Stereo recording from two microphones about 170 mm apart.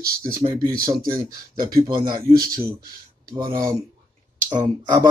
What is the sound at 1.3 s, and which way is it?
Speech, 60° right (ahead or behind).